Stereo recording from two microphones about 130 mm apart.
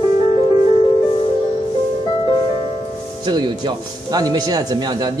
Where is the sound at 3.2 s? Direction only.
35° right (ahead or behind).